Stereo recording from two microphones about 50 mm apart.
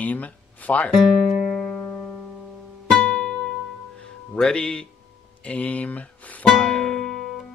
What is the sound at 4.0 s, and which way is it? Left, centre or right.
Music, centre.